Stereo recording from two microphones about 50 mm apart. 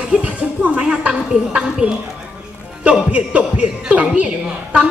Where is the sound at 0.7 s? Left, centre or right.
Centre.